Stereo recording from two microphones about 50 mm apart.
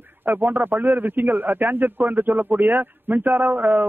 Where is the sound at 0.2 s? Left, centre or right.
Right.